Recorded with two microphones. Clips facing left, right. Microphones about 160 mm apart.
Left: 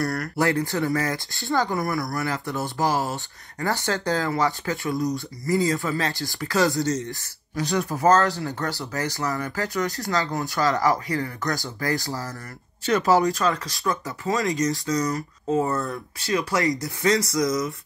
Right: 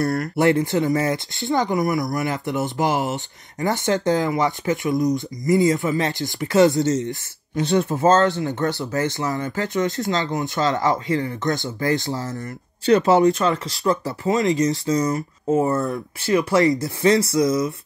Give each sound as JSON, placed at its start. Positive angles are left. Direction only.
{"t": 0.0, "sound": "speech", "side_deg": -25}